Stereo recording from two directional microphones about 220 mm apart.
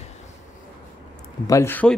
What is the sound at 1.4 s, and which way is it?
Speech, 15° left (ahead or behind).